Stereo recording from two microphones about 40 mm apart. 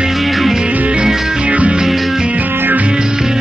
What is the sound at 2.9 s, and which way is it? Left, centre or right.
Music, centre.